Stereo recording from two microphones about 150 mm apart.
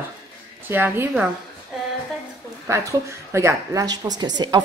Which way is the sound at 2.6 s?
20° right (ahead or behind).